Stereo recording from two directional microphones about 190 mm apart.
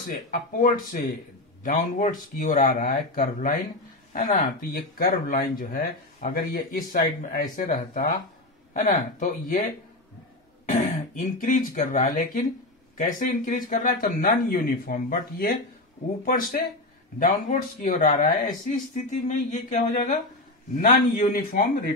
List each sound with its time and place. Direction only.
0.0 s speech: 45° left (ahead or behind)
10.7 s speech: 40° left (ahead or behind)
19.0 s a sound: 40° left (ahead or behind)
20.8 s speech: 45° left (ahead or behind)